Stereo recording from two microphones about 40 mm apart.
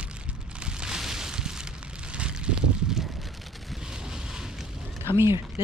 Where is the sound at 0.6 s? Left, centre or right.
Right.